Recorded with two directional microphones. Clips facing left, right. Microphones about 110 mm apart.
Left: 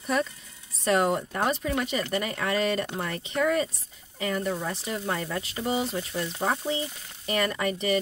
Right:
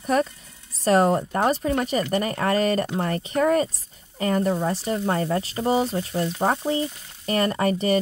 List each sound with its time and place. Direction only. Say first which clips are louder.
0.0 s speech: right 5 dB; 40° right (ahead or behind)